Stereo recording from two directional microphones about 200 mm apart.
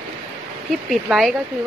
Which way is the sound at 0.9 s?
Centre (ahead or behind).